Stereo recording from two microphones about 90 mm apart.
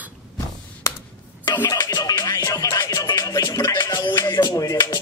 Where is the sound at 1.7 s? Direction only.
45° left (ahead or behind).